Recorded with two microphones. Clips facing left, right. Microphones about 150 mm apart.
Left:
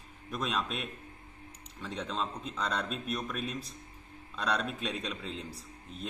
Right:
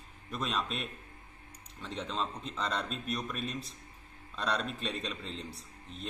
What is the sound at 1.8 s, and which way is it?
A man's voice, 5° left (ahead or behind).